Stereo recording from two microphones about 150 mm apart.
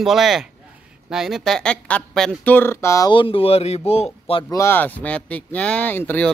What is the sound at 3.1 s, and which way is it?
Speech, 35° left (ahead or behind).